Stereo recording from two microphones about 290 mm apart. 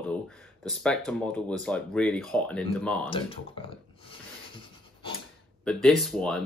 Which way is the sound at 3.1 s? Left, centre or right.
Centre.